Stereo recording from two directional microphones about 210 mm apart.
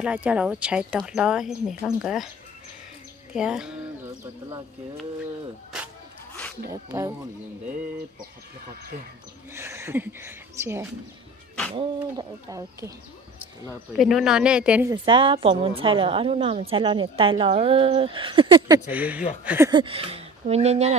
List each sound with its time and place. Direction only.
0.0 s speech: 5° right (ahead or behind)
3.3 s speech: 5° right (ahead or behind)
6.7 s speech: 15° right (ahead or behind)
9.5 s speech: 10° right (ahead or behind)
13.9 s speech: centre (ahead or behind)
14.9 s a woman's voice: 25° right (ahead or behind)
18.9 s speech: 5° right (ahead or behind)
19.7 s speech: 25° right (ahead or behind)